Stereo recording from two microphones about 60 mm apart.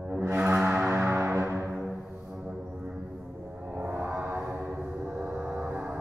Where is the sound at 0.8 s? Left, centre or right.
Right.